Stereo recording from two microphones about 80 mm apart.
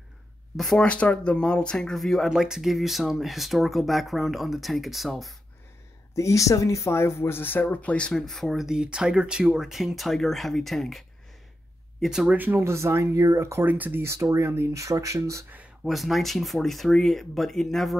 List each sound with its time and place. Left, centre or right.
0.6 s speech: centre
0.8 s speech: centre
6.1 s speech: left
7.6 s speech: centre
8.1 s speech: centre
12.4 s speech: right
12.7 s speech: right
13.7 s speech: right
15.8 s speech: centre